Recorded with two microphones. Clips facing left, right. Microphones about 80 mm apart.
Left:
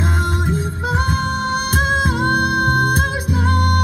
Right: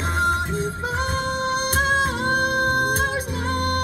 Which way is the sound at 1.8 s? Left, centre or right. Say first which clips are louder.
Left 2 dB; centre.